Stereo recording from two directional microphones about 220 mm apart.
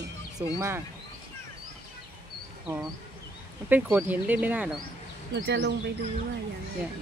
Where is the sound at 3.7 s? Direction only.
10° right (ahead or behind).